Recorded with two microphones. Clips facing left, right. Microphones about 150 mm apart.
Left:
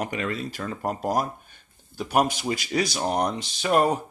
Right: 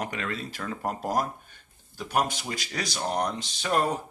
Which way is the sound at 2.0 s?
15° left (ahead or behind).